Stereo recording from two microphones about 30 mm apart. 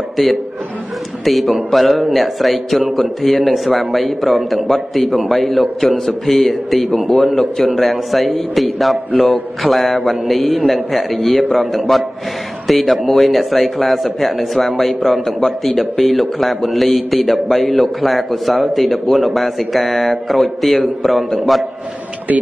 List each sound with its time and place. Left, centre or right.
0.2 s a man's voice: centre
7.7 s a man's voice: centre
22.3 s speech: right